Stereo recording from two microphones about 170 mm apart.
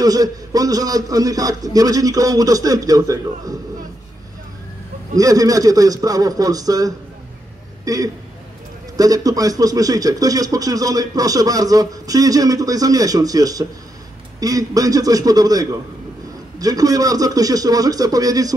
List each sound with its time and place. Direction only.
0.0 s speech: 20° right (ahead or behind)
5.1 s speech: 20° right (ahead or behind)